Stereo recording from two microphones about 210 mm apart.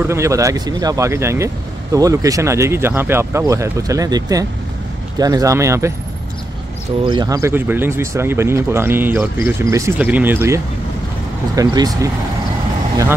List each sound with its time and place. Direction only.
0.1 s speech: 15° right (ahead or behind)
7.1 s speech: 20° right (ahead or behind)